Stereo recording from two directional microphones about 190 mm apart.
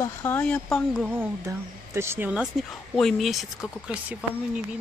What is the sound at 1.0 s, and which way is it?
Speech, 10° right (ahead or behind).